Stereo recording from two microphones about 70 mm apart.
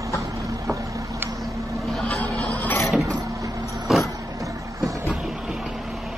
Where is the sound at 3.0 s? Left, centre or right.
Right.